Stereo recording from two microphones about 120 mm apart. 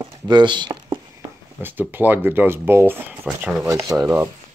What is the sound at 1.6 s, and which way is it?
A man's voice, 15° right (ahead or behind).